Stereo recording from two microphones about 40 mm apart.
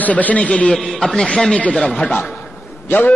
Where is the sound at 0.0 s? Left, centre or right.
Left.